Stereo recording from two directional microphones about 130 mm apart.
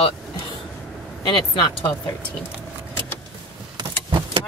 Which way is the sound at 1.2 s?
40° left (ahead or behind).